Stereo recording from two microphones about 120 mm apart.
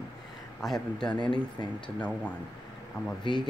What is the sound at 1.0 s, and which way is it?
Speech, 40° left (ahead or behind).